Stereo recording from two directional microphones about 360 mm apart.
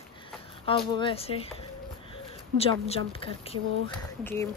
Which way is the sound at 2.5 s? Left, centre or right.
Centre.